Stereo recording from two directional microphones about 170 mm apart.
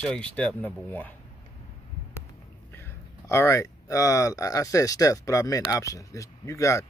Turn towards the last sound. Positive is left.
turn(degrees=20)  # may be behind; listen again after turning